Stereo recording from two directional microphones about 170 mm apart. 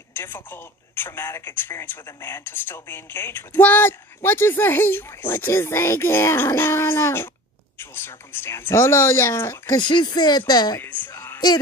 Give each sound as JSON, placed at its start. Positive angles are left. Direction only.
{"t": 0.1, "sound": "speech", "side_deg": 15}
{"t": 9.8, "sound": "speech", "side_deg": 25}
{"t": 10.8, "sound": "a woman's voice", "side_deg": 10}